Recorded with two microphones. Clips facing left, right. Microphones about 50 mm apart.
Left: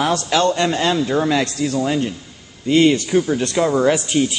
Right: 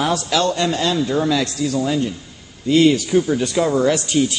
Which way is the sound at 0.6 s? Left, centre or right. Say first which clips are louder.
Left 1 dB; left.